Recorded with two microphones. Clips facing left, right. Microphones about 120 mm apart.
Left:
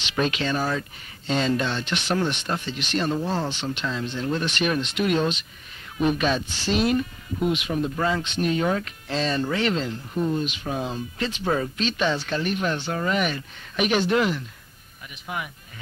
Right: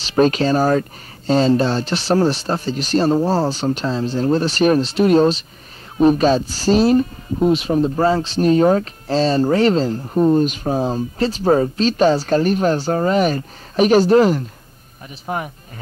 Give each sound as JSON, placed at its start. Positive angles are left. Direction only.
{"t": 0.0, "sound": "speech", "side_deg": -40}